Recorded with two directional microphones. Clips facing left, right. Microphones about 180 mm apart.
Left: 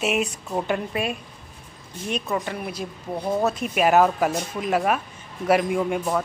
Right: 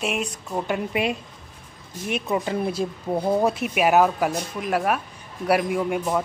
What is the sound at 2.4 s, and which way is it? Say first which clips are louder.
Speech: right 6 dB; 30° right (ahead or behind).